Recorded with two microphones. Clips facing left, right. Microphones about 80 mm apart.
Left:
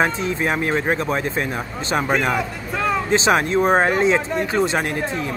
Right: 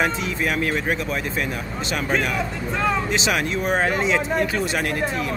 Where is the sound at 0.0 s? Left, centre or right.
Left.